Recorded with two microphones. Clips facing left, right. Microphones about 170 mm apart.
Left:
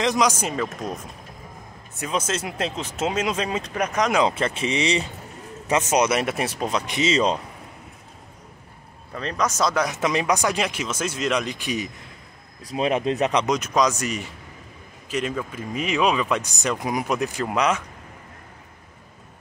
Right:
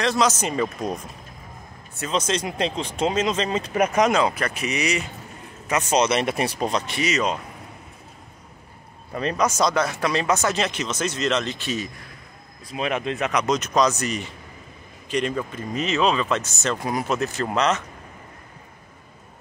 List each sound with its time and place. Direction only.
0.0 s speech: 15° left (ahead or behind)
3.6 s speech: 5° right (ahead or behind)
4.3 s speech: 25° left (ahead or behind); by 6.8 s 5° left (ahead or behind)
6.9 s speech: 25° left (ahead or behind)
9.1 s speech: 10° right (ahead or behind)
9.6 s speech: 5° left (ahead or behind)
9.8 s speech: 15° left (ahead or behind)
12.6 s speech: 35° left (ahead or behind)
13.5 s speech: 10° left (ahead or behind)